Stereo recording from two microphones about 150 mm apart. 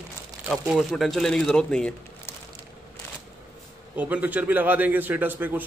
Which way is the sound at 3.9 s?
10° right (ahead or behind).